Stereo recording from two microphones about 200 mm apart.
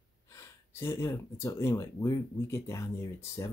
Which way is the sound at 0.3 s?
15° left (ahead or behind).